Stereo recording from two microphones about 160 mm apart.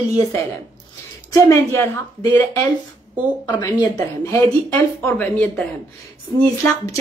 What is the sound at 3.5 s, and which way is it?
Speech, 25° left (ahead or behind).